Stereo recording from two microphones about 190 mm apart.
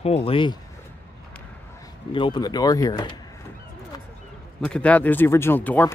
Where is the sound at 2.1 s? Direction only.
25° left (ahead or behind).